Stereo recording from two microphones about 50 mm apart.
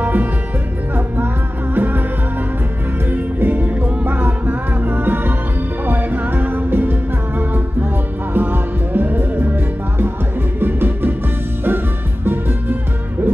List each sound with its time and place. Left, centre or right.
0.0 s music: right
3.1 s music: right
12.3 s music: right